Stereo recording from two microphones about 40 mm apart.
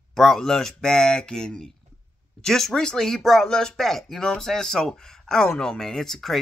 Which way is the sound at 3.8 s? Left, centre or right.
Centre.